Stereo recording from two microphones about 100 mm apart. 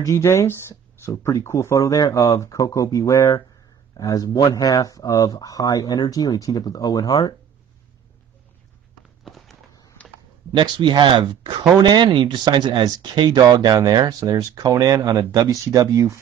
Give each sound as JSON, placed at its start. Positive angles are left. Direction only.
{"t": 0.0, "sound": "speech", "side_deg": 30}
{"t": 9.2, "sound": "walk", "side_deg": 0}
{"t": 10.0, "sound": "typing", "side_deg": 10}
{"t": 10.5, "sound": "speech", "side_deg": -50}